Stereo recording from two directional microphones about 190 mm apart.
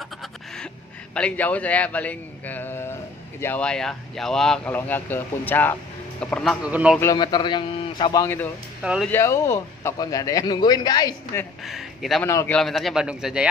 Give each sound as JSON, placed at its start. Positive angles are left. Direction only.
{"t": 0.0, "sound": "a sound", "side_deg": 0}
{"t": 1.1, "sound": "a man's voice", "side_deg": 5}
{"t": 7.0, "sound": "speech", "side_deg": 20}
{"t": 8.8, "sound": "speech", "side_deg": -5}
{"t": 9.1, "sound": "speech", "side_deg": 15}
{"t": 11.6, "sound": "speech", "side_deg": 0}
{"t": 12.3, "sound": "speech", "side_deg": 15}
{"t": 12.5, "sound": "speech", "side_deg": 0}